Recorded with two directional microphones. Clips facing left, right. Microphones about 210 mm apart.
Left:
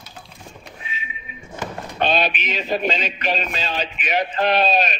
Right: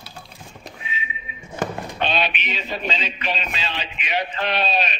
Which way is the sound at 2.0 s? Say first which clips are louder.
Left 4 dB; 40° left (ahead or behind).